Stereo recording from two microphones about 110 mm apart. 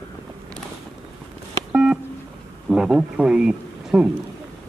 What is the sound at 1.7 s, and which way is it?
Telephone dialing, 5° right (ahead or behind).